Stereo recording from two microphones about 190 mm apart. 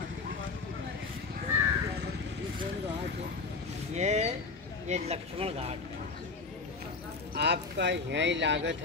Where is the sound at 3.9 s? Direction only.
35° right (ahead or behind).